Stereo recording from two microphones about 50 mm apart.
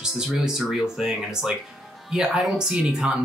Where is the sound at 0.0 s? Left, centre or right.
Centre.